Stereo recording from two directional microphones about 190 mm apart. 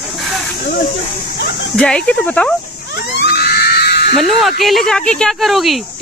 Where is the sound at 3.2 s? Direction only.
55° left (ahead or behind).